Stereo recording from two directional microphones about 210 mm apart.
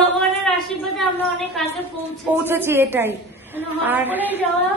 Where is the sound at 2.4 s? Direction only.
10° right (ahead or behind).